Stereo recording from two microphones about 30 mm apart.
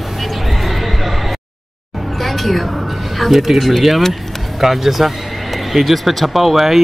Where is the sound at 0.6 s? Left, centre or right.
Centre.